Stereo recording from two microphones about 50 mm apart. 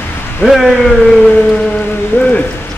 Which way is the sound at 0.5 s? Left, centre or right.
Centre.